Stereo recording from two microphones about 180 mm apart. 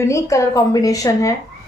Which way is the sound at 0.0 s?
15° left (ahead or behind).